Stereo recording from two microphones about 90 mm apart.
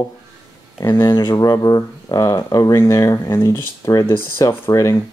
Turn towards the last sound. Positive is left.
turn(degrees=35)  # may be behind; listen again after turning